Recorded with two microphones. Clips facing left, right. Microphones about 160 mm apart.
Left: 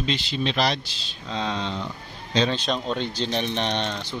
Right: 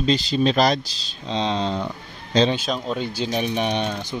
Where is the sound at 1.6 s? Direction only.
40° right (ahead or behind).